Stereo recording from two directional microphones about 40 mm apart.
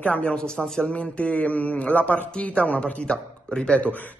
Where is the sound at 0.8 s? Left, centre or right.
Left.